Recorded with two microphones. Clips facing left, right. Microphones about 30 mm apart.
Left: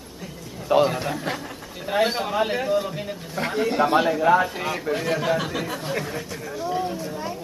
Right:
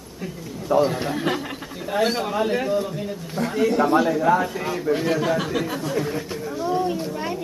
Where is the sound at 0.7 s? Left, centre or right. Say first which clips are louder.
Even; left.